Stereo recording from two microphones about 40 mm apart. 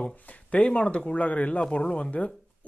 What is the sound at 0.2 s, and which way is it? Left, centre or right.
Speech, left.